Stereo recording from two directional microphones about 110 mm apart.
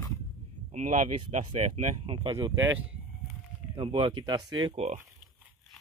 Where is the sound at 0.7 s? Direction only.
90° right.